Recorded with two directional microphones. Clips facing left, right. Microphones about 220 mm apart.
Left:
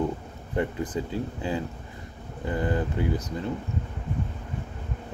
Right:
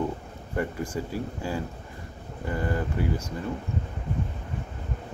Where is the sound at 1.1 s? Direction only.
20° left (ahead or behind).